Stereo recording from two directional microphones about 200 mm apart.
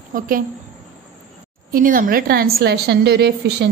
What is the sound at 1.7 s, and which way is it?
A woman's voice, 45° right (ahead or behind).